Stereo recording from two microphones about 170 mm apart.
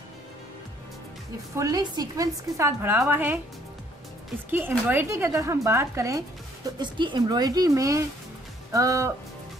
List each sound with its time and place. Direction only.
1.5 s speech: 20° right (ahead or behind)
4.5 s speech: 10° right (ahead or behind)